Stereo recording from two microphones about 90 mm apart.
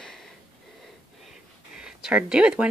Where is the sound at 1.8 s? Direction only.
10° right (ahead or behind).